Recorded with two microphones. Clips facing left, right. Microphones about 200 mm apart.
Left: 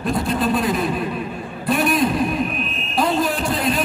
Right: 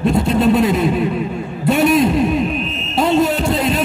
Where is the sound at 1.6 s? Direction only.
25° right (ahead or behind).